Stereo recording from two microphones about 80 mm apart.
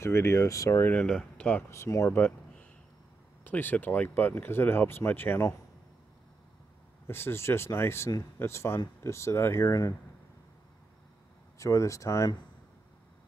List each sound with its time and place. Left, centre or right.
0.0 s speech: left
0.9 s speech: centre
1.7 s speech: left
3.4 s speech: left
7.1 s speech: left
11.5 s speech: left